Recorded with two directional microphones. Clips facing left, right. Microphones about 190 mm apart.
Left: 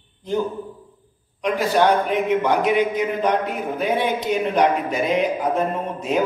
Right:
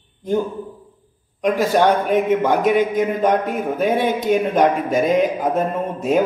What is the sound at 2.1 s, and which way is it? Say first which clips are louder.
A man's voice: right 3 dB; 50° right (ahead or behind).